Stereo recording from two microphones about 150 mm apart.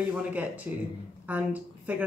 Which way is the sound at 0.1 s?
10° right (ahead or behind).